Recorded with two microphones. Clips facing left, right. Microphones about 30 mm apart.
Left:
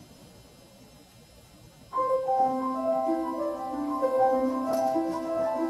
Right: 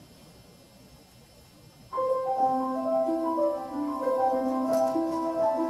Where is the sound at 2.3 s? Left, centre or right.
Left.